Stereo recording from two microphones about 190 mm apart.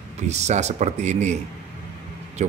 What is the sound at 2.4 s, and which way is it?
Speech, 40° right (ahead or behind).